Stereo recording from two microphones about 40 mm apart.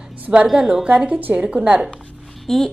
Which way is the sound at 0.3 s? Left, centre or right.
Right.